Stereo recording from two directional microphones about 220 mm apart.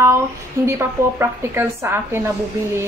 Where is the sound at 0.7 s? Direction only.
10° right (ahead or behind).